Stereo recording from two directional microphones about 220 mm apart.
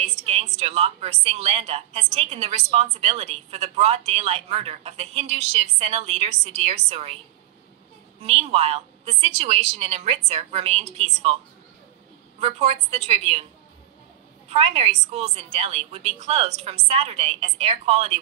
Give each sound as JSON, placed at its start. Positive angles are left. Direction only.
{"t": 0.2, "sound": "a woman's voice", "side_deg": -30}
{"t": 8.2, "sound": "a woman's voice", "side_deg": -25}
{"t": 12.4, "sound": "a woman's voice", "side_deg": -30}
{"t": 14.5, "sound": "a woman's voice", "side_deg": -25}